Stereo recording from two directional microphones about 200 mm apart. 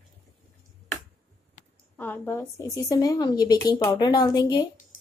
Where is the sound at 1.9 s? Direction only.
10° left (ahead or behind).